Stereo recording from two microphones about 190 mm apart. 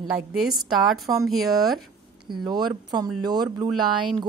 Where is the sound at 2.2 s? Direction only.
25° right (ahead or behind).